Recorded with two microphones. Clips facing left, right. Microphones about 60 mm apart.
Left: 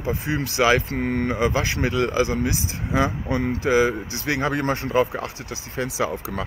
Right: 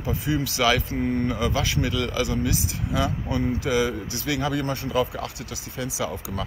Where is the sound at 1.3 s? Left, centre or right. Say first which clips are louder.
Left 3 dB; left.